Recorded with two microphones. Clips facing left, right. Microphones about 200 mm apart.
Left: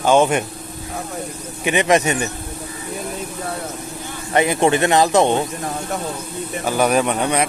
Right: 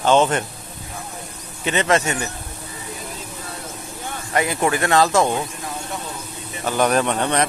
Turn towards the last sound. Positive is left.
turn(degrees=10)  # may be behind; listen again after turning